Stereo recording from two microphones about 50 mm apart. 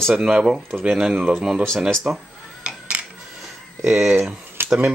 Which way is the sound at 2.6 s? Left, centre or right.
Right.